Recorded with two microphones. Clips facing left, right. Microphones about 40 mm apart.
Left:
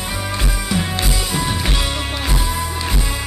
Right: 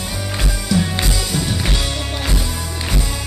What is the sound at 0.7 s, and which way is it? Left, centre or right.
Music, left.